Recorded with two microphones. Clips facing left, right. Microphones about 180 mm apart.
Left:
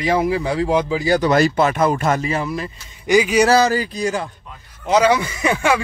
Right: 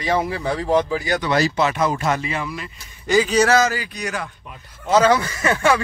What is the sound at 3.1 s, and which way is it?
Speech, 15° left (ahead or behind).